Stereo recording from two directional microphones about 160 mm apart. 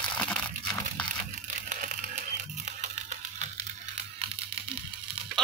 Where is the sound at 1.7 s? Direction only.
50° right (ahead or behind).